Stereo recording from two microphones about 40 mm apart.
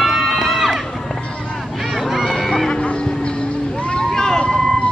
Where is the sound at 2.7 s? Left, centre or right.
Left.